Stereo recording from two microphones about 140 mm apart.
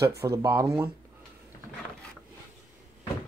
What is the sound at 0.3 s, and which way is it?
Speech, 25° right (ahead or behind).